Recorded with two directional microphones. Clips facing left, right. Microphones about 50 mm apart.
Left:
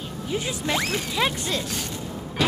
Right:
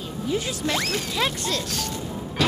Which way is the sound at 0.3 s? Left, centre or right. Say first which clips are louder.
Right 1 dB; centre.